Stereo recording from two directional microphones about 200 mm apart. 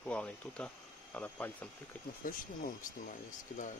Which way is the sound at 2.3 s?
45° left (ahead or behind).